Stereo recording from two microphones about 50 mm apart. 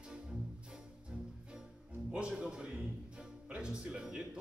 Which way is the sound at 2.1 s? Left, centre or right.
Centre.